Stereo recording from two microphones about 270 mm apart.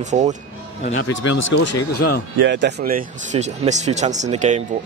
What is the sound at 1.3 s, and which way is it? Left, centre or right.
Speech, left.